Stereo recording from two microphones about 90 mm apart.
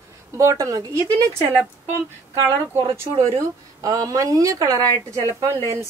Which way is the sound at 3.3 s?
40° right (ahead or behind).